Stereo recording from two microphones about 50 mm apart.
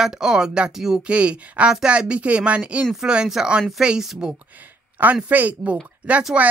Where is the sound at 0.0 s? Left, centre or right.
Centre.